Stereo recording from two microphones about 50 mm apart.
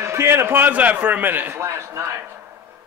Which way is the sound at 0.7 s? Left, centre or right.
Right.